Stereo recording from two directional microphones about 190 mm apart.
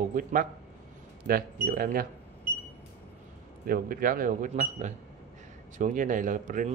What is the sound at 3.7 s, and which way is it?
Speech, 50° right (ahead or behind).